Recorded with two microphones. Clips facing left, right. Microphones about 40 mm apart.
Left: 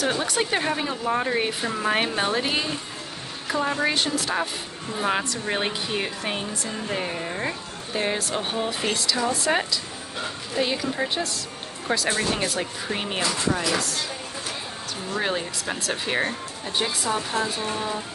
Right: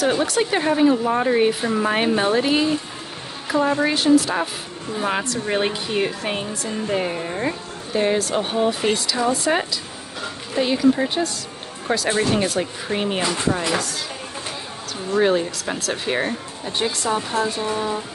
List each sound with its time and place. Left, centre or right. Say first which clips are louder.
0.0 s a woman's voice: right 5 dB; centre
15.1 s a woman's voice: right 9 dB; centre